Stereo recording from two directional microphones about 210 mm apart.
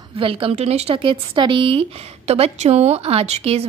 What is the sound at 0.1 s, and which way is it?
A woman's voice, 25° right (ahead or behind).